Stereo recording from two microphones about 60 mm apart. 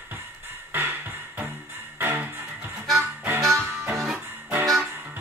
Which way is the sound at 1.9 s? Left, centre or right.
Right.